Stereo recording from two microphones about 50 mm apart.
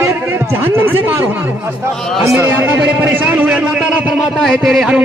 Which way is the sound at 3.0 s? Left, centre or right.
Right.